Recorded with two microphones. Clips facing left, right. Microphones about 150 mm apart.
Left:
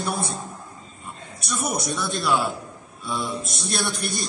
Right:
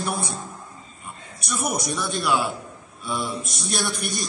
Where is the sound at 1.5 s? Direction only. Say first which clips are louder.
Even; 5° right (ahead or behind).